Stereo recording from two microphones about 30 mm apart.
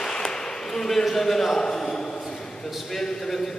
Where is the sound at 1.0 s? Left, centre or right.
Centre.